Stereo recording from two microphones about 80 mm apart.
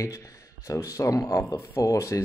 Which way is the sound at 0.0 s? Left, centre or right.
Left.